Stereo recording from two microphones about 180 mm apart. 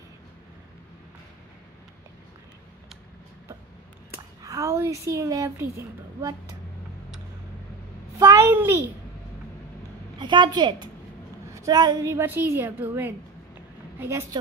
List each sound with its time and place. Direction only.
4.1 s speech: 15° right (ahead or behind)
8.2 s a child's voice: 15° right (ahead or behind)
10.1 s a woman's voice: 25° right (ahead or behind)